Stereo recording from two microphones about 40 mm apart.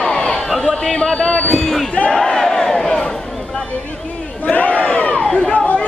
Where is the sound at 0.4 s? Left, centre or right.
Centre.